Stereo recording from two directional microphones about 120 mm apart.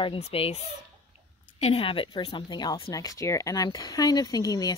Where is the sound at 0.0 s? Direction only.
50° left (ahead or behind).